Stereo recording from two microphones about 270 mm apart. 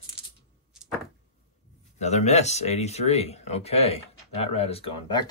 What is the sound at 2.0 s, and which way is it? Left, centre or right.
Speech, left.